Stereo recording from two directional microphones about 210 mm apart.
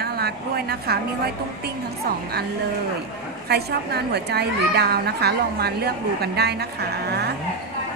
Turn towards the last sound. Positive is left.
turn(degrees=-50)  # may be behind; listen again after turning